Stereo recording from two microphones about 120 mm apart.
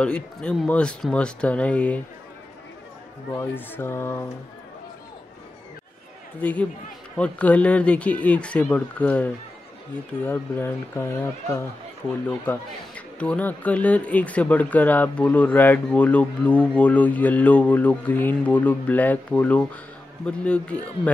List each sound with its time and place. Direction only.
0.0 s speech: 10° left (ahead or behind)
3.3 s speech: 15° left (ahead or behind)
6.4 s speech: 10° left (ahead or behind)